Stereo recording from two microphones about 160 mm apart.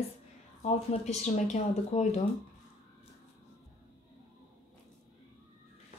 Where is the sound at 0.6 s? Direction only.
45° left (ahead or behind).